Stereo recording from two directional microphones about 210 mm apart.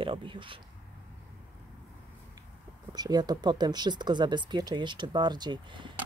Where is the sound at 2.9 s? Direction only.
20° right (ahead or behind).